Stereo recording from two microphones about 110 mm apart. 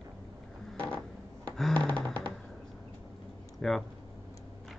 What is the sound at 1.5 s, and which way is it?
Music, 5° left (ahead or behind).